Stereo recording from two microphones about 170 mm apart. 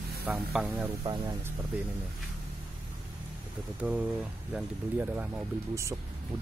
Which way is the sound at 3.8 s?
10° right (ahead or behind).